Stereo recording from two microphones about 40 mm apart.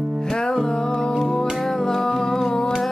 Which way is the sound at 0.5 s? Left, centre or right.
Centre.